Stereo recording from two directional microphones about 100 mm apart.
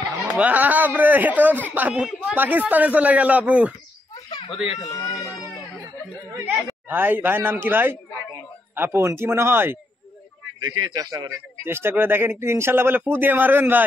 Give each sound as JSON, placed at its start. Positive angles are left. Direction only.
{"t": 0.3, "sound": "a man's voice", "side_deg": -15}
{"t": 4.4, "sound": "speech", "side_deg": 90}
{"t": 4.8, "sound": "speech", "side_deg": 35}
{"t": 6.9, "sound": "speech", "side_deg": -20}
{"t": 10.6, "sound": "a man's voice", "side_deg": -45}
{"t": 11.6, "sound": "speech", "side_deg": -25}